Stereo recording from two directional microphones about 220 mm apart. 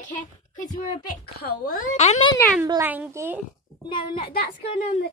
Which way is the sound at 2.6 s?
10° right (ahead or behind).